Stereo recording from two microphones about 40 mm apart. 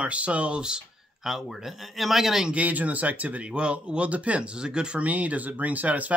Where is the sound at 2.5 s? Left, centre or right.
Right.